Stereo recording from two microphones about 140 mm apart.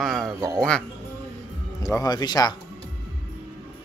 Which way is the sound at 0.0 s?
Centre (ahead or behind).